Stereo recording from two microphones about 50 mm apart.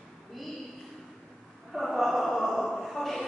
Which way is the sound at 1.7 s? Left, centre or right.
Centre.